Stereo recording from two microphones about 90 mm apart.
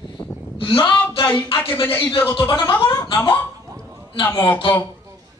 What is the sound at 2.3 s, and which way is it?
Speech, 60° left (ahead or behind).